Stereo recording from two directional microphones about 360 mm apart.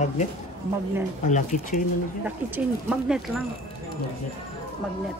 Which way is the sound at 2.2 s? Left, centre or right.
Centre.